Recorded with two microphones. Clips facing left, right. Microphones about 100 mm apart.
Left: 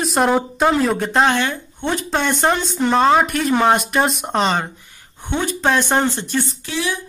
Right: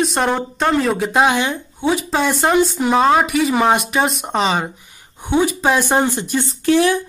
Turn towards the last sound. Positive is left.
turn(degrees=-55)  # may be behind; listen again after turning